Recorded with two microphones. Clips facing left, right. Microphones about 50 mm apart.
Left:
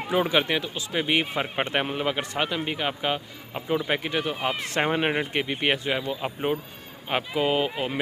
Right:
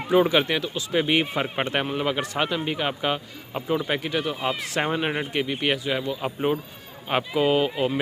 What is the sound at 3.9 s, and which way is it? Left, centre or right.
Speech, centre.